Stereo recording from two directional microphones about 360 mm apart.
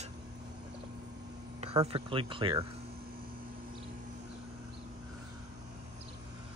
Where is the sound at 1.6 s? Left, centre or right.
Centre.